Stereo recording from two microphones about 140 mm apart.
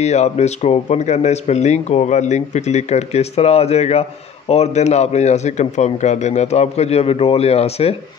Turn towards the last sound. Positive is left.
turn(degrees=45)  # may be behind; listen again after turning